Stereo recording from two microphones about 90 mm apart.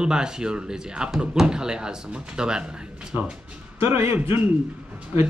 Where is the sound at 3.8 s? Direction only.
30° right (ahead or behind).